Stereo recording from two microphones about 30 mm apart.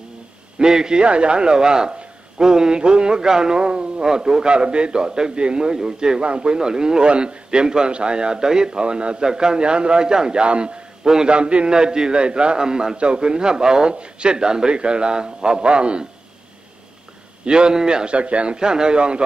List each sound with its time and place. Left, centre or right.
0.6 s a man's voice: right
1.0 s a man's voice: right
8.8 s a man's voice: right
9.2 s a man's voice: right
12.9 s a man's voice: right
17.5 s a man's voice: right
18.1 s speech: right
18.6 s a man's voice: right